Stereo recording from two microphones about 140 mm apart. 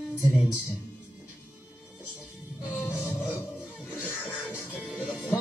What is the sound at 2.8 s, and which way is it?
Music, 15° left (ahead or behind).